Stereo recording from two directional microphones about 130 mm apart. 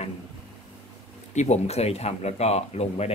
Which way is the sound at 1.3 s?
60° left (ahead or behind).